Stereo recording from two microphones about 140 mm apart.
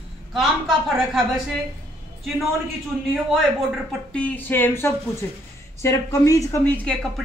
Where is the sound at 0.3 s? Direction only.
Centre (ahead or behind).